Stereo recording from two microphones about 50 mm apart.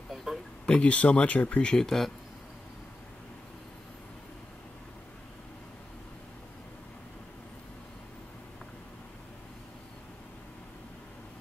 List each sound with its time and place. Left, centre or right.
0.1 s a sound: centre
0.7 s speech: left
1.8 s speech: centre